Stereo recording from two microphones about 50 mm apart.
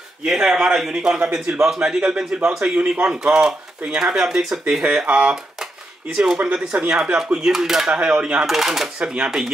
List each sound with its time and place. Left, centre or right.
0.2 s speech: centre
7.9 s speech: centre
8.5 s speech: centre